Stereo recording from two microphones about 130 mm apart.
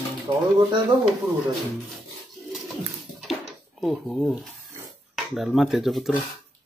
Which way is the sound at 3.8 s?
Centre (ahead or behind).